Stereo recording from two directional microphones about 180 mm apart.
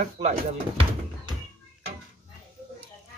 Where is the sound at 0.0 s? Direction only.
45° right (ahead or behind).